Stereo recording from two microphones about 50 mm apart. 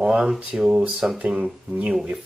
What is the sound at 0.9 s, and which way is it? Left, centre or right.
Speech, right.